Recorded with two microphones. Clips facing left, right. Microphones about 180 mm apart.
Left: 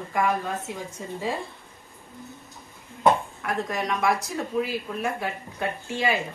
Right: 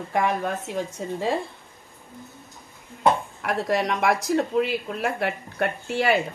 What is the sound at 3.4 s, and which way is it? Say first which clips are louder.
Speech: right 4 dB; 70° right (ahead or behind).